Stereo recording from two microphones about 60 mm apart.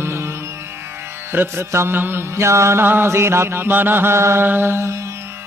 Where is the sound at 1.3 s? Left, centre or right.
Right.